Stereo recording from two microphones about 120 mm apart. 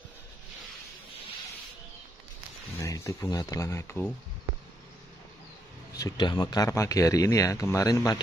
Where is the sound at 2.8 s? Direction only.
25° left (ahead or behind).